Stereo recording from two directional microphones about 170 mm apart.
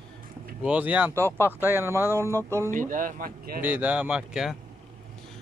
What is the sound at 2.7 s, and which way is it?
Speech, 50° right (ahead or behind).